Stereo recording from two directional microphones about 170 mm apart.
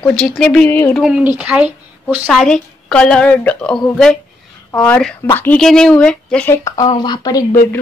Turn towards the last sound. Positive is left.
turn(degrees=20)  # may be behind; listen again after turning